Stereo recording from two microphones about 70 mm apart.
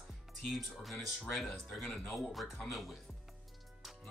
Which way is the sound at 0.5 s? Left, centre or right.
Centre.